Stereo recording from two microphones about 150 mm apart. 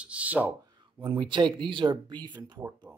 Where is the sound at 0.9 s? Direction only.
30° right (ahead or behind).